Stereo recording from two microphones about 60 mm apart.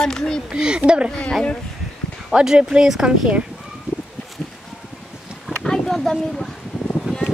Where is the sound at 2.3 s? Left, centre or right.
Centre.